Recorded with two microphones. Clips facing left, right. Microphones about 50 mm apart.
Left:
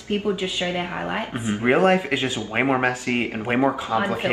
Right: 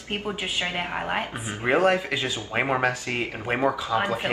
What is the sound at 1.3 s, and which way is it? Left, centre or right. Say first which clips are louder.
Speech: left 5 dB; left.